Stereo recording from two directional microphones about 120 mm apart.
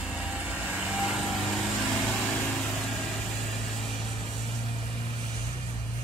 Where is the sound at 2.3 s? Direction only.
15° left (ahead or behind).